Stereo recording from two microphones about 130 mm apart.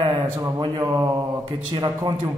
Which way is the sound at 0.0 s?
25° right (ahead or behind).